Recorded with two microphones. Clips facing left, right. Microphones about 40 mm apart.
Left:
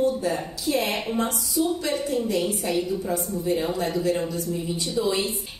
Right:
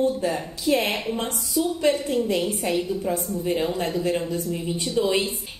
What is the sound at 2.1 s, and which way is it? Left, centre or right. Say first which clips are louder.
A woman's voice: right 1 dB; right.